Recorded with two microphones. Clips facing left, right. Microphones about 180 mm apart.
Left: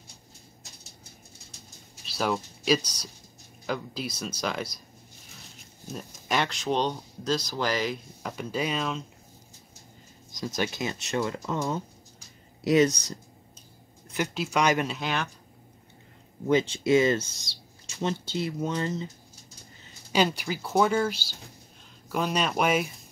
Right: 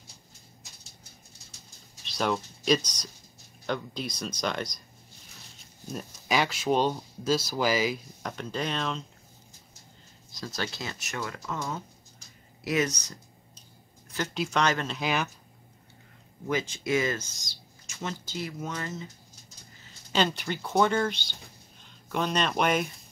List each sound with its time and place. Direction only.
2.0 s speech: 5° left (ahead or behind)
5.9 s speech: centre (ahead or behind)
10.3 s speech: 15° left (ahead or behind)
14.3 s speech: centre (ahead or behind)
14.6 s speech: 15° left (ahead or behind)
15.0 s speech: 5° right (ahead or behind)
16.4 s speech: 25° left (ahead or behind)
20.1 s speech: 10° left (ahead or behind)